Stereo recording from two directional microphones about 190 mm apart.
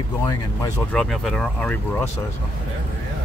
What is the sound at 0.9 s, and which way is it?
Speech, 5° left (ahead or behind).